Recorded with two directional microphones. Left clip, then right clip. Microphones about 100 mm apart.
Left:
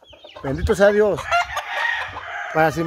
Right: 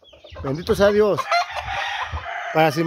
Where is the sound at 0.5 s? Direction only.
15° right (ahead or behind).